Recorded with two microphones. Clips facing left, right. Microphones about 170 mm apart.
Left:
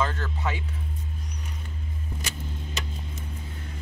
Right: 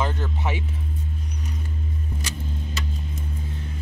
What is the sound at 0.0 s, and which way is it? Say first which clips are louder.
Music: right 2 dB; 20° right (ahead or behind).